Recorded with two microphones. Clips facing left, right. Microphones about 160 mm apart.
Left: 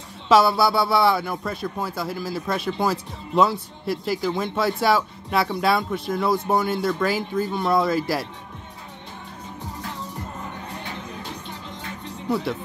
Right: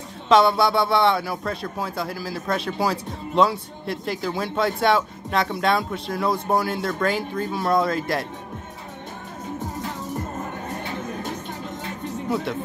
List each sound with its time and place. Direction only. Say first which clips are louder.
0.3 s speech: even; 5° left (ahead or behind)
10.4 s music: right 4 dB; 45° right (ahead or behind)